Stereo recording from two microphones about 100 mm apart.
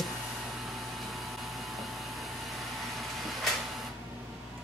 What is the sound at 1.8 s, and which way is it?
Vehicle, centre (ahead or behind).